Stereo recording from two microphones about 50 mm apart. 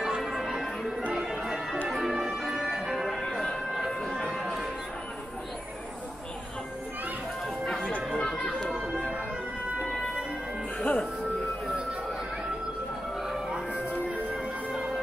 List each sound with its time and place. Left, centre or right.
0.0 s bell: centre
1.1 s music: centre
4.3 s a sound: centre
7.4 s music: centre
8.1 s chatter: centre
10.8 s music: left